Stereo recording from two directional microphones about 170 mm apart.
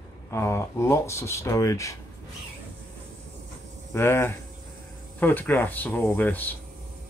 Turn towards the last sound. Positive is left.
turn(degrees=10)  # may be behind; listen again after turning